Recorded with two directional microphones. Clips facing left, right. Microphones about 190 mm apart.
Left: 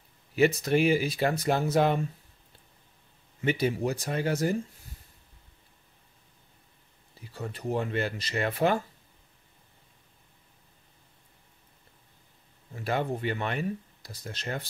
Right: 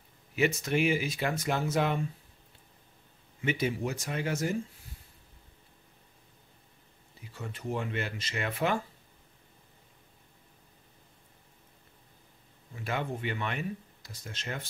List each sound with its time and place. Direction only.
0.4 s speech: 35° left (ahead or behind)
3.3 s speech: 35° left (ahead or behind)
7.3 s speech: 35° left (ahead or behind)
12.7 s speech: 35° left (ahead or behind)